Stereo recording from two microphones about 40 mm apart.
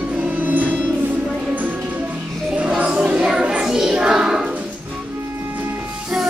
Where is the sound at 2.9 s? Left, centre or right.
Right.